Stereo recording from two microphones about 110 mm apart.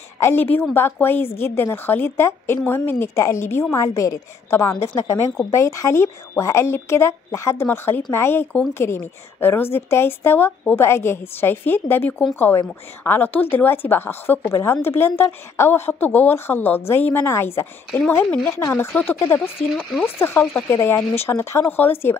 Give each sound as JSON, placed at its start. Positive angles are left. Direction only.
{"t": 0.2, "sound": "a woman's voice", "side_deg": 20}
{"t": 19.7, "sound": "frog", "side_deg": 0}
{"t": 20.2, "sound": "a woman's voice", "side_deg": 20}